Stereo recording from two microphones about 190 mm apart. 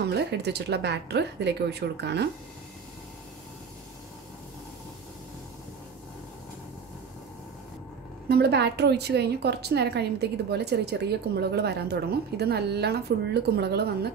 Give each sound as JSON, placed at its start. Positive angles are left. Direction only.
{"t": 0.0, "sound": "a woman's voice", "side_deg": -60}
{"t": 8.3, "sound": "a woman's voice", "side_deg": -60}